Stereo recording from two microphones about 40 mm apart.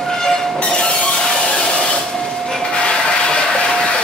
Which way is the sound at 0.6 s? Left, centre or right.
Left.